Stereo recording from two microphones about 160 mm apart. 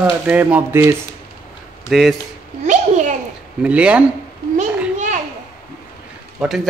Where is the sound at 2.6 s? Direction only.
50° right (ahead or behind).